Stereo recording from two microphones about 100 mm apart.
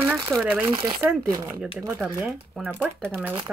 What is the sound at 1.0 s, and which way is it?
Speech, 20° right (ahead or behind).